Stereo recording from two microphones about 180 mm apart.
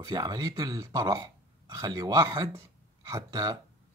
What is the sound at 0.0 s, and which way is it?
Speech, 20° right (ahead or behind).